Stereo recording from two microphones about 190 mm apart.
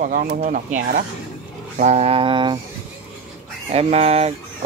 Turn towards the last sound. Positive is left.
turn(degrees=-35)  # may be behind; listen again after turning